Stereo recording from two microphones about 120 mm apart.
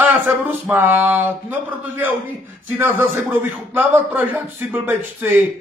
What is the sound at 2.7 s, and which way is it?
A man's voice, 20° right (ahead or behind).